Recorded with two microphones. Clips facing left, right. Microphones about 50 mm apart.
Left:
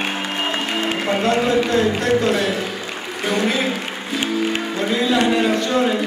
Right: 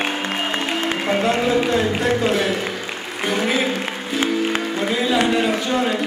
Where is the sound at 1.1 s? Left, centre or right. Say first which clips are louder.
Left 1 dB; centre.